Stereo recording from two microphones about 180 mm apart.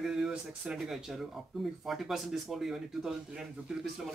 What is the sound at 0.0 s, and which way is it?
A man's voice, 5° right (ahead or behind).